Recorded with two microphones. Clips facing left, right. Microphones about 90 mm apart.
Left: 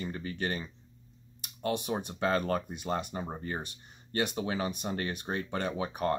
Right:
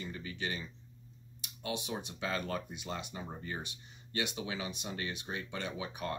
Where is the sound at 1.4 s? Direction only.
45° left (ahead or behind).